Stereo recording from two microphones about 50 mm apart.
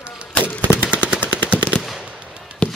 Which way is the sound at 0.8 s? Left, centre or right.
Right.